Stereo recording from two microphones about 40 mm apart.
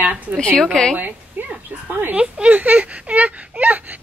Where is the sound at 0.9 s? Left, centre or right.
Right.